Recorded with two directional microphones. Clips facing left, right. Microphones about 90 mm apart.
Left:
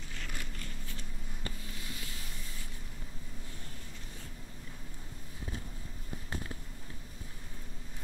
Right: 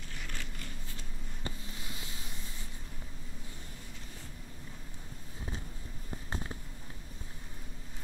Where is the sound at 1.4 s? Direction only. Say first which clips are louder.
Right 1 dB; 20° right (ahead or behind).